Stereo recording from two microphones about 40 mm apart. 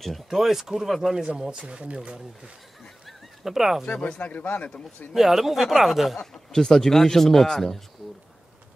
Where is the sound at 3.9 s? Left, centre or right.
Left.